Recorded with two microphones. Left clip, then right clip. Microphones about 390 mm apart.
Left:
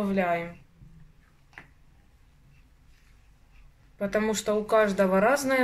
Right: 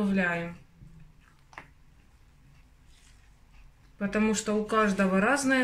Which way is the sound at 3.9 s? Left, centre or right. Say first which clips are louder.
Left 2 dB; centre.